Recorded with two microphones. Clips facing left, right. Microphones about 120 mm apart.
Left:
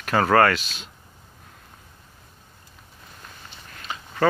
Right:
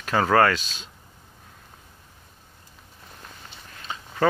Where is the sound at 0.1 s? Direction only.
15° right (ahead or behind).